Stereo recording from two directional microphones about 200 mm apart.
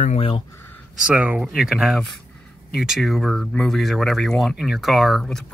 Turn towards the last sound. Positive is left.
turn(degrees=0)  # may be behind; listen again after turning